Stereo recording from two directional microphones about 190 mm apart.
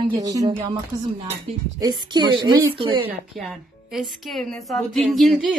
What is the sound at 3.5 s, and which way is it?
Speech, centre (ahead or behind).